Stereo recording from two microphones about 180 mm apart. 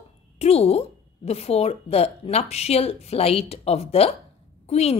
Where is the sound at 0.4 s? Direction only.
35° left (ahead or behind).